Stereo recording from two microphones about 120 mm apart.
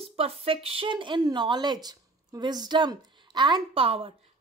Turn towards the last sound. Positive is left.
turn(degrees=-50)  # may be behind; listen again after turning